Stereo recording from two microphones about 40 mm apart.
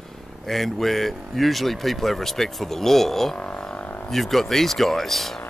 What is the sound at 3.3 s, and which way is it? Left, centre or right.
Didgeridoo, left.